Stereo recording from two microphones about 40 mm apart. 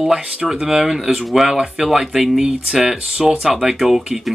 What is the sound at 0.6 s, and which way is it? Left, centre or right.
Speech, centre.